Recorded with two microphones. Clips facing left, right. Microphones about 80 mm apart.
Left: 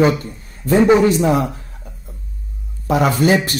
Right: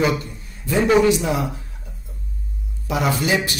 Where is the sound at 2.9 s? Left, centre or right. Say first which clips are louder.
Left 6 dB; left.